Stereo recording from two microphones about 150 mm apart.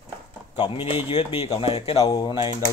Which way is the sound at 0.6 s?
35° left (ahead or behind).